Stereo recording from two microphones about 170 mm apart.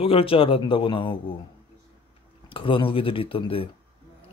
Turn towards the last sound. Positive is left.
turn(degrees=30)  # may be behind; listen again after turning